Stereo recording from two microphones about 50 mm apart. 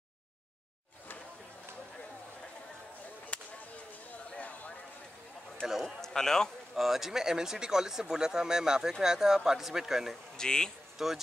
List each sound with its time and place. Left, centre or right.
3.3 s a sound: left
5.7 s speech: centre
5.9 s a man's voice: centre
6.7 s speech: centre
10.3 s speech: centre
11.0 s speech: centre